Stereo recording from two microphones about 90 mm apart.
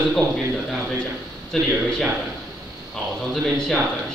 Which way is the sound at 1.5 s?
5° left (ahead or behind).